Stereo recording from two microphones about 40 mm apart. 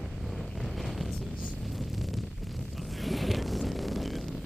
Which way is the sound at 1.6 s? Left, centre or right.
Centre.